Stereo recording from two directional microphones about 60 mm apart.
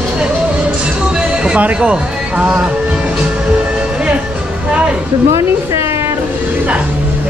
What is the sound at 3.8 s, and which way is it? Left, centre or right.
Music, centre.